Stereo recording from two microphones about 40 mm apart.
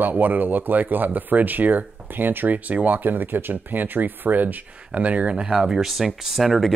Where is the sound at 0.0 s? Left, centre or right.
Right.